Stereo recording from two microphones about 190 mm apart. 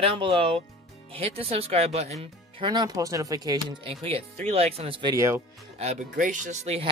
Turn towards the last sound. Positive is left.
turn(degrees=-35)  # may be behind; listen again after turning